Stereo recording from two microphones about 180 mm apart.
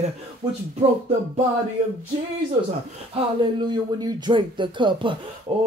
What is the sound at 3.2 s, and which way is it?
A man's voice, 30° right (ahead or behind).